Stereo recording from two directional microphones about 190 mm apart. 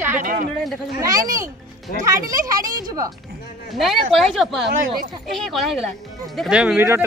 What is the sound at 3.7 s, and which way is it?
Speech, centre (ahead or behind).